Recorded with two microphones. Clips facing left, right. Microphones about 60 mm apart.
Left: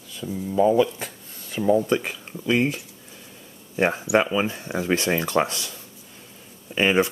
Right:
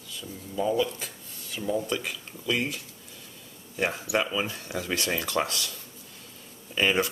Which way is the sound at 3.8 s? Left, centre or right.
Left.